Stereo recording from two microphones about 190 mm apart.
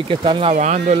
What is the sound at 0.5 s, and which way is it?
Speech, 40° right (ahead or behind).